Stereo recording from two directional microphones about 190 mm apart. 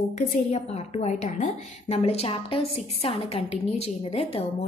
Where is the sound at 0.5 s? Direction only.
35° left (ahead or behind).